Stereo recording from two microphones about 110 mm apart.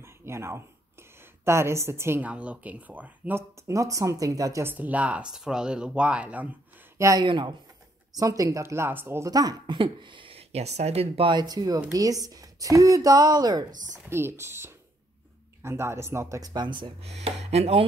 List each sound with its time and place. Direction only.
0.0 s a sound: 25° right (ahead or behind)
1.4 s speech: 25° right (ahead or behind)
4.6 s speech: 15° right (ahead or behind)
7.0 s speech: 30° right (ahead or behind)
7.2 s speech: 45° right (ahead or behind)
8.1 s speech: 30° right (ahead or behind)
9.3 s speech: 35° right (ahead or behind); by 11.3 s 65° right (ahead or behind)
11.3 s speech: 35° right (ahead or behind)
14.0 s speech: 20° right (ahead or behind); by 16.9 s 45° right (ahead or behind)
17.0 s speech: 70° right (ahead or behind)